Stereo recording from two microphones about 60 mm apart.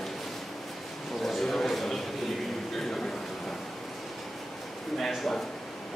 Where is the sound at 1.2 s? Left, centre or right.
Centre.